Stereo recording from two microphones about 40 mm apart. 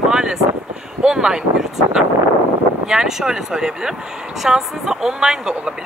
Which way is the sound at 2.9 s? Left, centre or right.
Centre.